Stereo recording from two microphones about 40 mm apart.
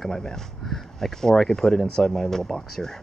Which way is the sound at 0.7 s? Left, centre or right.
Centre.